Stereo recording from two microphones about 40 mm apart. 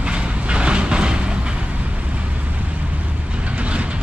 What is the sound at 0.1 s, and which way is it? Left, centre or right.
Train, right.